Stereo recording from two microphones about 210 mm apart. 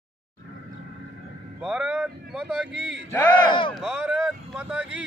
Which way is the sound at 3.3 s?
20° left (ahead or behind).